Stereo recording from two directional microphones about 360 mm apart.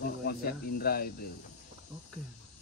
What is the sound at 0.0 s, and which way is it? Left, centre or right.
Speech, left.